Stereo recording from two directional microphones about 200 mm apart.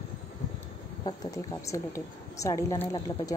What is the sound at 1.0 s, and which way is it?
A woman's voice, 15° left (ahead or behind).